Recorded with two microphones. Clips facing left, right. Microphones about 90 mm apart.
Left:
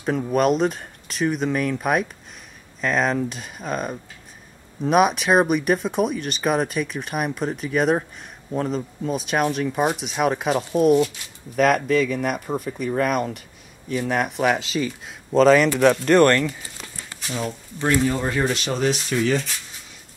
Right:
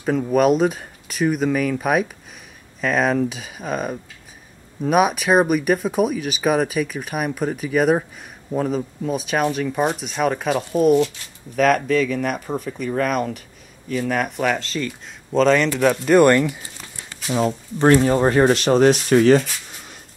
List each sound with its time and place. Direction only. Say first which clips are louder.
0.0 s speech: right 3 dB; centre (ahead or behind)
17.3 s speech: right 8 dB; 30° right (ahead or behind)
17.8 s speech: right 6 dB; 45° right (ahead or behind)